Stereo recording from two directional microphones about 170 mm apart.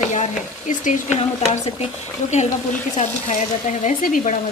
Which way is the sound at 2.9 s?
45° left (ahead or behind).